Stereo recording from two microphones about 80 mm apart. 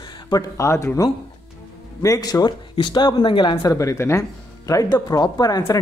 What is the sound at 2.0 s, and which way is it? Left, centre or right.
Speech, left.